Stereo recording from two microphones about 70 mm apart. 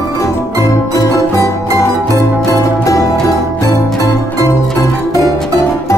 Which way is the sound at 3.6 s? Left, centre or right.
Left.